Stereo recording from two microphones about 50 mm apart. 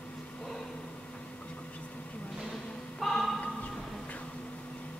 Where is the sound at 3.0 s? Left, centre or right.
Centre.